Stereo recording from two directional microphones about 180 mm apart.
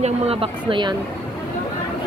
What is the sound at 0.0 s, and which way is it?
Speech, 30° right (ahead or behind).